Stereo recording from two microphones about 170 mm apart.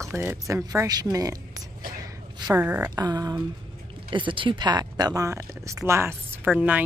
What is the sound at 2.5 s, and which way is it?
Speech, 10° right (ahead or behind).